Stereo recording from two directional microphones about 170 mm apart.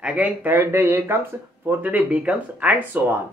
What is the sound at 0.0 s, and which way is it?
Speech, 10° right (ahead or behind).